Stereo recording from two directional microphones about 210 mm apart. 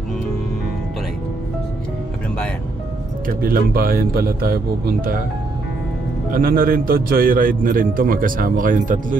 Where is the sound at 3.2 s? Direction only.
45° right (ahead or behind).